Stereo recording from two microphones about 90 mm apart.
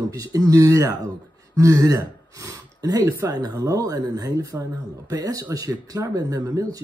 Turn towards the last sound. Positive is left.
turn(degrees=-45)  # may be behind; listen again after turning